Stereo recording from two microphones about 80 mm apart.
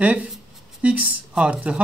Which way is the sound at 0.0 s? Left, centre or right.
Centre.